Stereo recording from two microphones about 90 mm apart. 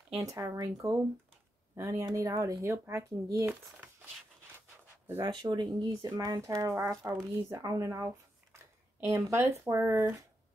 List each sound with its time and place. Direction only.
0.2 s speech: 40° right (ahead or behind)
5.3 s speech: 55° right (ahead or behind)
9.0 s speech: 30° right (ahead or behind)